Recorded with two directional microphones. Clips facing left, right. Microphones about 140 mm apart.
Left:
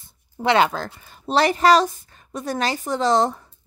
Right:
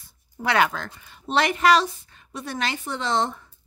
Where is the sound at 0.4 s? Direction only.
25° left (ahead or behind).